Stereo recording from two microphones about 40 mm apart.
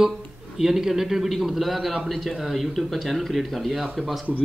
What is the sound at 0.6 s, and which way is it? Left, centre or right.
Speech, centre.